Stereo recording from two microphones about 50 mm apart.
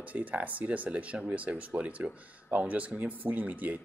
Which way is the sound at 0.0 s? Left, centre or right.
Right.